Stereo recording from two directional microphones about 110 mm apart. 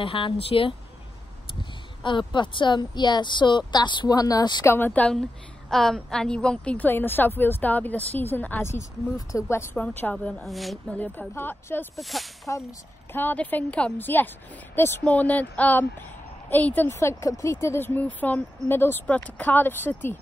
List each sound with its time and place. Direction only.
0.0 s speech: 55° left (ahead or behind); by 4.6 s 40° left (ahead or behind)
4.6 s a woman's voice: 20° left (ahead or behind)
5.7 s a woman's voice: 5° left (ahead or behind)
10.4 s a woman's voice: centre (ahead or behind)
11.0 s a woman's voice: 15° left (ahead or behind)
12.0 s a woman's voice: centre (ahead or behind)
12.5 s a woman's voice: 25° left (ahead or behind)